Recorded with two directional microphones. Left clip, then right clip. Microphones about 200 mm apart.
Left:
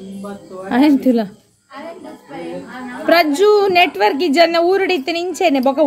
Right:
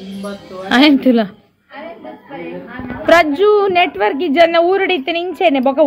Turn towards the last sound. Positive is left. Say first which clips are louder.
# right 2 dB
turn(degrees=5)  # may be behind; listen again after turning